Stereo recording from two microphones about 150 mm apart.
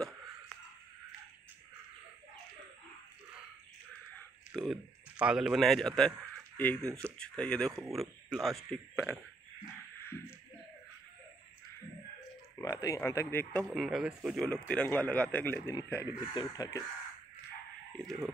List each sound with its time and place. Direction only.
4.6 s speech: 5° right (ahead or behind)
8.6 s speech: 10° left (ahead or behind)
9.9 s a sound: 15° left (ahead or behind)
12.5 s speech: 20° left (ahead or behind)
13.7 s speech: centre (ahead or behind)
14.5 s speech: 10° left (ahead or behind); by 16.8 s 25° left (ahead or behind)
17.9 s speech: centre (ahead or behind)